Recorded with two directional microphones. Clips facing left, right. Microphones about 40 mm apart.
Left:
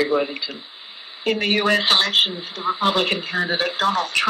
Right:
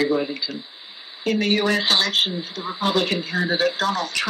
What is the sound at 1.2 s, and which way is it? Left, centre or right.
Speech, left.